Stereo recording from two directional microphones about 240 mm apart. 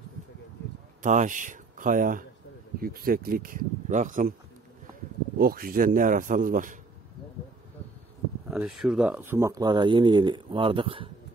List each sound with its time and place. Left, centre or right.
1.0 s speech: right
5.4 s speech: right
8.5 s speech: centre; by 11.1 s right